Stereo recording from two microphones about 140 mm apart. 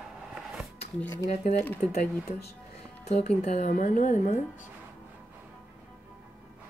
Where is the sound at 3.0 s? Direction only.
50° left (ahead or behind).